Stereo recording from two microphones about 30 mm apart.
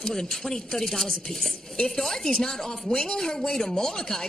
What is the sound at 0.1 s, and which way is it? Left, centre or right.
Speech, centre.